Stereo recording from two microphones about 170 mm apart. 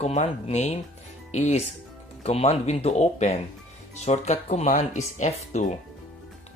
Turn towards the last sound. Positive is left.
turn(degrees=40)  # may be behind; listen again after turning